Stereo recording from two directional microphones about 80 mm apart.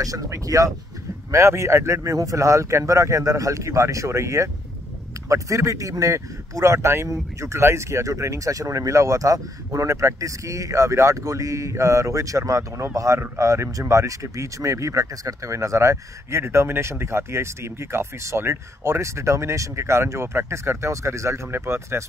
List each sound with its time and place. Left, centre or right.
0.0 s a man's voice: right